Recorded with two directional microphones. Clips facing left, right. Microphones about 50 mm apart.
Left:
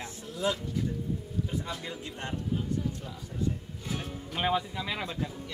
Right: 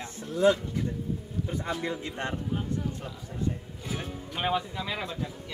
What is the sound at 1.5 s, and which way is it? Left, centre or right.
Speech, right.